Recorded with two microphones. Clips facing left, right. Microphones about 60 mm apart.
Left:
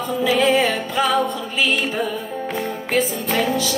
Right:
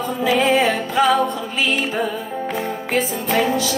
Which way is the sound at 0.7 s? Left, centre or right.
Right.